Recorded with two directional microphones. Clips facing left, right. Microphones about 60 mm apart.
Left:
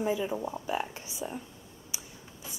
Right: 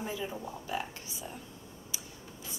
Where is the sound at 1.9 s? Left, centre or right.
Centre.